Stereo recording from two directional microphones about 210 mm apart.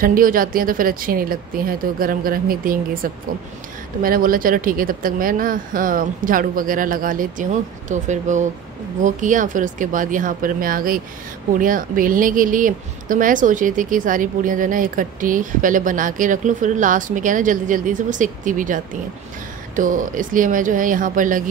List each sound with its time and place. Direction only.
0.0 s a woman's voice: 40° right (ahead or behind)
4.0 s a woman's voice: 45° right (ahead or behind)